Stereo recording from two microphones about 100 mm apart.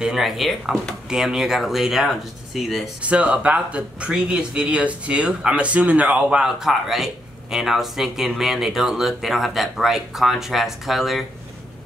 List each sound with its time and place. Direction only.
0.0 s speech: 5° right (ahead or behind)